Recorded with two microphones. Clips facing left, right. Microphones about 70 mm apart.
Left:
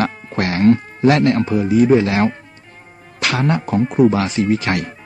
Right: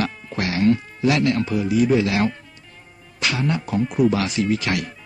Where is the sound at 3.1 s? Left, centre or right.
Left.